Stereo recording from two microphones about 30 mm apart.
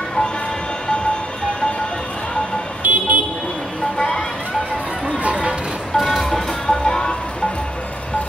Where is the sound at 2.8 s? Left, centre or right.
Right.